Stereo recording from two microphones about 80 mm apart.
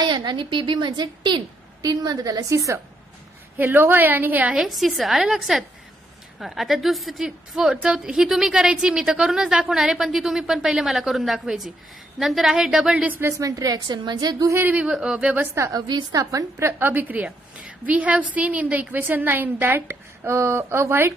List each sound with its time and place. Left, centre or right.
0.0 s a woman's voice: right
2.5 s a woman's voice: right
3.5 s a woman's voice: right
4.6 s a woman's voice: centre
13.2 s a woman's voice: right
14.7 s a woman's voice: centre
15.5 s a woman's voice: right
16.8 s a woman's voice: right